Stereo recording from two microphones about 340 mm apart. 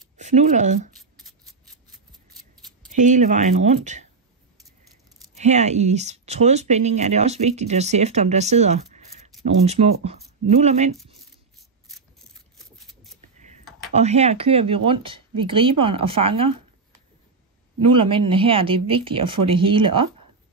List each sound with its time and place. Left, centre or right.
0.2 s speech: right
0.9 s a sound: centre
2.8 s speech: right
5.4 s speech: centre
12.5 s a sound: centre
13.9 s speech: centre
17.9 s speech: centre